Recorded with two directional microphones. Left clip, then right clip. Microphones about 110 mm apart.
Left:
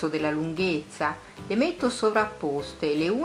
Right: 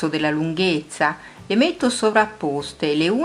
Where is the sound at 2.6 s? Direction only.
30° right (ahead or behind).